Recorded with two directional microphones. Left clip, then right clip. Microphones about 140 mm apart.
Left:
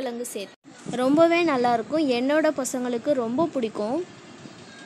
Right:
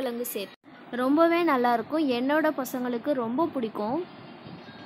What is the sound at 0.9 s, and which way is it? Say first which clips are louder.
A woman's voice: left 3 dB; 10° left (ahead or behind).